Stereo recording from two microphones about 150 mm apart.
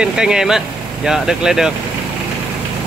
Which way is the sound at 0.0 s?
5° right (ahead or behind).